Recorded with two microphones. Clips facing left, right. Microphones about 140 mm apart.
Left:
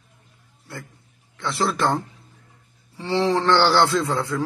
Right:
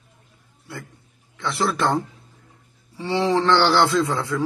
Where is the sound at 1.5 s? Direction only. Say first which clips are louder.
Even; centre (ahead or behind).